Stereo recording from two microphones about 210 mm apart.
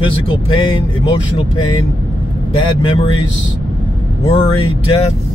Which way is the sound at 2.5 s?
25° left (ahead or behind).